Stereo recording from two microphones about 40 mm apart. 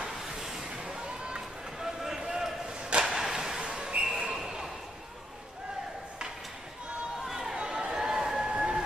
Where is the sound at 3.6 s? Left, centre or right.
Right.